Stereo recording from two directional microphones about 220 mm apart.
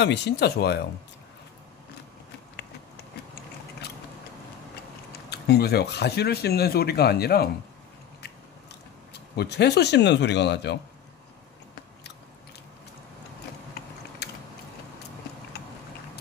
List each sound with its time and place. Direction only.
0.0 s speech: 50° left (ahead or behind)
5.3 s speech: 45° left (ahead or behind)
9.1 s speech: 50° left (ahead or behind)
13.8 s mechanisms: 45° left (ahead or behind)
14.2 s a sound: 45° left (ahead or behind)